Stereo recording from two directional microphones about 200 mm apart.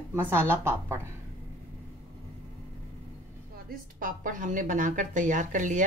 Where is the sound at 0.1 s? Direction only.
10° right (ahead or behind).